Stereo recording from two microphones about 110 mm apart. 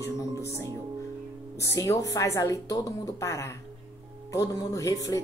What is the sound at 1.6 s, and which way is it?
Speech, 25° left (ahead or behind).